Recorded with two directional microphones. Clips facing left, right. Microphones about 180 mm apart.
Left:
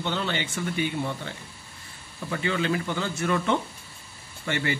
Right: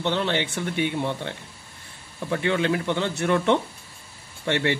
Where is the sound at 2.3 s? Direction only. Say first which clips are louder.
Right 3 dB; 65° right (ahead or behind).